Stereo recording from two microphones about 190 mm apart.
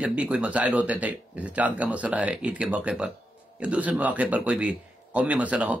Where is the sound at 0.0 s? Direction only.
5° right (ahead or behind).